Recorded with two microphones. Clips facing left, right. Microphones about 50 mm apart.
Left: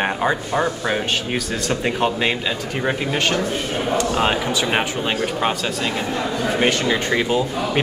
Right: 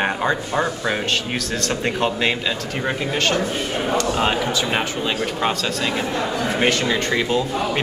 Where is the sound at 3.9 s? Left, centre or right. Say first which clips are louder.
Left 1 dB; centre.